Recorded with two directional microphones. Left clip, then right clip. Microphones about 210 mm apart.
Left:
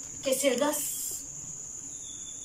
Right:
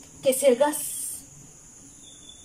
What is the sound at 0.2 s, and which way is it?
Speech, 40° right (ahead or behind).